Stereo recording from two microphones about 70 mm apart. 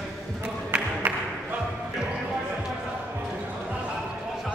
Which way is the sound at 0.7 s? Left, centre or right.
Centre.